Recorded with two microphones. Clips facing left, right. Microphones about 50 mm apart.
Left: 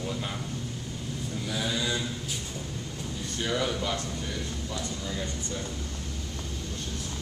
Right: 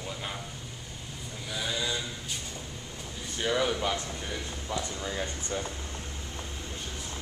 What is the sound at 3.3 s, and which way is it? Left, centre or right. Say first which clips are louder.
Speech: right 2 dB; centre.